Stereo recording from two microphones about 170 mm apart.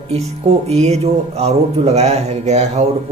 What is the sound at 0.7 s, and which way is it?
Speech, 40° right (ahead or behind).